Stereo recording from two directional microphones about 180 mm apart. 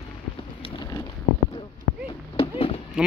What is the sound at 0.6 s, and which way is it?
Boat, 20° left (ahead or behind).